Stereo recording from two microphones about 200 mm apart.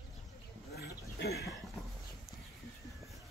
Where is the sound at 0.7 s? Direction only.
55° left (ahead or behind).